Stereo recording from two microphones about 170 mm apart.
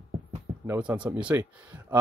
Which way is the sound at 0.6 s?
10° right (ahead or behind).